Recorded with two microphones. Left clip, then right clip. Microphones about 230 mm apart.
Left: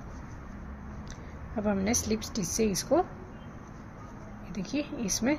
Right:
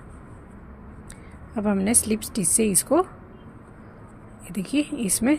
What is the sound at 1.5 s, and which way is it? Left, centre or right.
Speech, right.